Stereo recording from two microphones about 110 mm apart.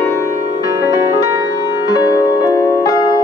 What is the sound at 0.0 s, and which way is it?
Music, 30° left (ahead or behind).